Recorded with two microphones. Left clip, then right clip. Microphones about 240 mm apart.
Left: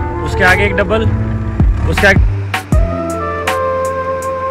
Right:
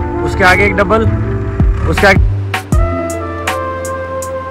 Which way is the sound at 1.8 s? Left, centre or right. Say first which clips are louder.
Right 1 dB; centre.